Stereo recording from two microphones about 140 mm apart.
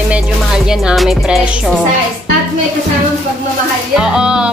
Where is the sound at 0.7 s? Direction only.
5° right (ahead or behind).